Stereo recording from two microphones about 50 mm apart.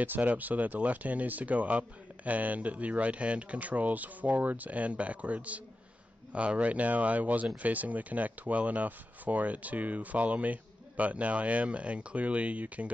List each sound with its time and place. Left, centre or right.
0.0 s speech: right